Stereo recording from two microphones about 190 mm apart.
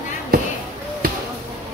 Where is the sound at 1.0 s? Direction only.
50° right (ahead or behind).